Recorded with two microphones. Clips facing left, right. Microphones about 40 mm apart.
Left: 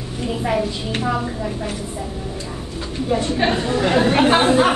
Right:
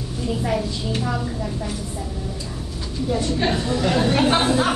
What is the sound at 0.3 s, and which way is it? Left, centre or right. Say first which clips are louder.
A woman's voice: left 3 dB; left.